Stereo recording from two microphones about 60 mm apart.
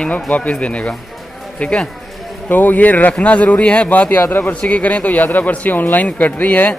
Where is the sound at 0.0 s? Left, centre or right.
Left.